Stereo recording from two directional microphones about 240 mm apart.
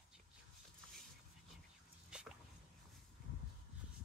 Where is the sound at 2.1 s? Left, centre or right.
Centre.